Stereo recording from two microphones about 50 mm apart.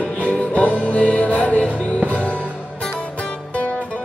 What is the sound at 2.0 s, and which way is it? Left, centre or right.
Music, right.